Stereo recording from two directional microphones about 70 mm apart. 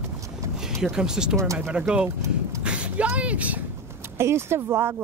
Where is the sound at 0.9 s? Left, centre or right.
Centre.